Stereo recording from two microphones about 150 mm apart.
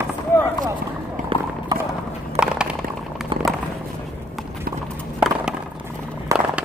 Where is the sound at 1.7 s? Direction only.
25° right (ahead or behind).